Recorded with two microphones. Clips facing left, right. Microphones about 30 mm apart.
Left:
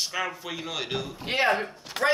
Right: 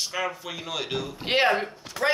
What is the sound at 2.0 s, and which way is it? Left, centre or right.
Speech, left.